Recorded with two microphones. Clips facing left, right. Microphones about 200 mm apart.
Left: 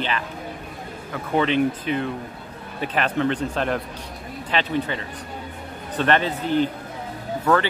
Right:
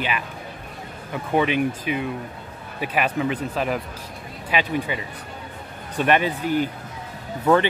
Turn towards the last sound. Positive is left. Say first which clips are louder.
# right 2 dB
turn(degrees=-20)  # may be behind; listen again after turning